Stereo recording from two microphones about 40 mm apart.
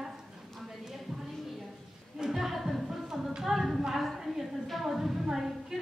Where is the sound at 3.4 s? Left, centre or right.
Centre.